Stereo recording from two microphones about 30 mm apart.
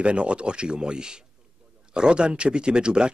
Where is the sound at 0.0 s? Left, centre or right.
Right.